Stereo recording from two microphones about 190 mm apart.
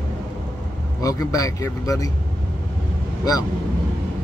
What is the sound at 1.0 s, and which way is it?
Speech, 20° left (ahead or behind).